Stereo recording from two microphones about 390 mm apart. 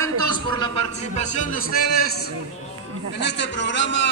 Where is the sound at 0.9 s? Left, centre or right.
Centre.